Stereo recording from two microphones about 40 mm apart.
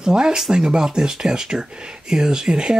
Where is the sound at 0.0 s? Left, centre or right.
Centre.